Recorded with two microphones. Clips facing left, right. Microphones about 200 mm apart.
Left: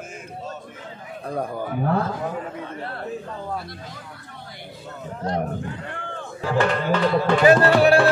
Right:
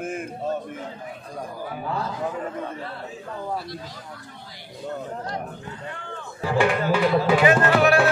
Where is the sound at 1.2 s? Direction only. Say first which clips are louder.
Left 8 dB; 60° left (ahead or behind).